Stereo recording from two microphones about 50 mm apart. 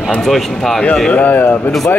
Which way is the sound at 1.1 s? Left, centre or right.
Left.